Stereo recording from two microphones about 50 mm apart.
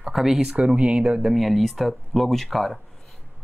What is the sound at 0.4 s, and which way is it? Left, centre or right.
Speech, centre.